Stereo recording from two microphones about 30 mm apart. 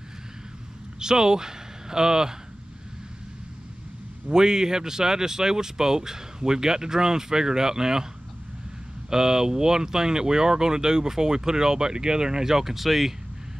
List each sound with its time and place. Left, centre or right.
0.9 s speech: right
4.3 s speech: right
9.1 s speech: right